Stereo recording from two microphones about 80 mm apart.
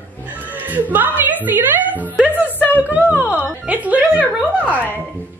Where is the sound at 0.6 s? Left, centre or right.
Right.